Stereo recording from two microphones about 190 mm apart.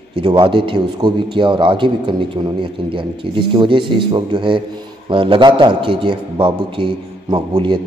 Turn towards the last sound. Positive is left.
turn(degrees=-25)  # may be behind; listen again after turning